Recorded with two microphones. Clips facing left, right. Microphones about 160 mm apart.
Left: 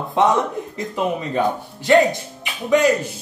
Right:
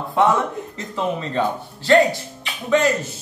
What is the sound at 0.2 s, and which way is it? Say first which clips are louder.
A man's voice: left 1 dB; 20° left (ahead or behind).